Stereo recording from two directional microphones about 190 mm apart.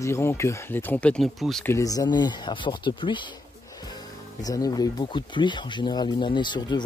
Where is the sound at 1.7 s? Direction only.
20° left (ahead or behind).